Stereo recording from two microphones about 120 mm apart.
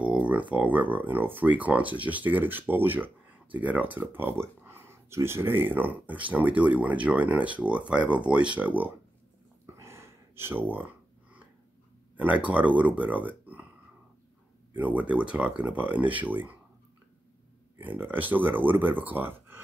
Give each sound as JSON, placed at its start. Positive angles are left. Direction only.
{"t": 0.0, "sound": "a sound", "side_deg": -10}
{"t": 0.6, "sound": "speech", "side_deg": -15}
{"t": 9.8, "sound": "a sound", "side_deg": -25}
{"t": 12.2, "sound": "speech", "side_deg": -10}
{"t": 14.8, "sound": "speech", "side_deg": -15}
{"t": 17.7, "sound": "speech", "side_deg": -15}